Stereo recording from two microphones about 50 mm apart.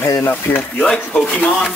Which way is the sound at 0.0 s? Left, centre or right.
Left.